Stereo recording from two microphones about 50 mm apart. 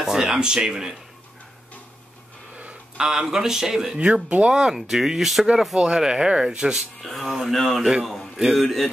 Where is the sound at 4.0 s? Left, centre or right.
Right.